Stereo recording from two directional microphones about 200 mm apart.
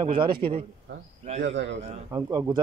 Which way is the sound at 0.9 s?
65° right (ahead or behind).